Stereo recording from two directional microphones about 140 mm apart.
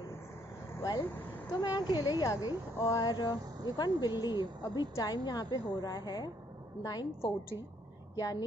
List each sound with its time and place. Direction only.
0.7 s vehicle: 30° left (ahead or behind)
1.5 s a woman's voice: 30° left (ahead or behind)
8.2 s a woman's voice: 25° left (ahead or behind)